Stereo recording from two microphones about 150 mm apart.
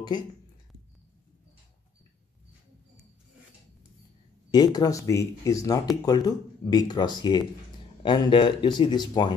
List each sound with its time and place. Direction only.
4.5 s speech: 25° left (ahead or behind)